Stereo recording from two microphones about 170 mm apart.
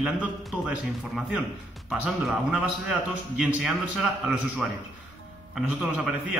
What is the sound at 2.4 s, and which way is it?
A man's voice, 5° right (ahead or behind).